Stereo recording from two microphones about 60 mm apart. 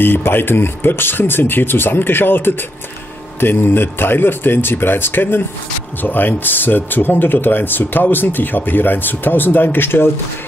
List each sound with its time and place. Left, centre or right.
0.0 s speech: left